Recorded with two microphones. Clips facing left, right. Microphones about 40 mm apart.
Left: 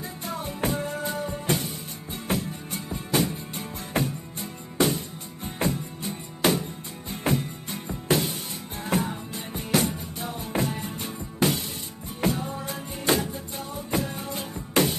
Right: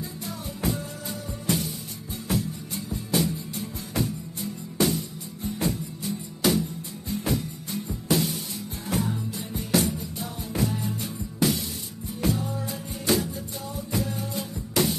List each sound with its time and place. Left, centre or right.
0.3 s music: left